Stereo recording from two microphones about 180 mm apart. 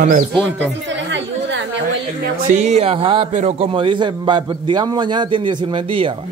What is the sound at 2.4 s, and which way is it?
A man's voice, 40° right (ahead or behind).